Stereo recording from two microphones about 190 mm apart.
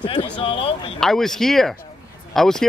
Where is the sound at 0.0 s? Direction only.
25° left (ahead or behind).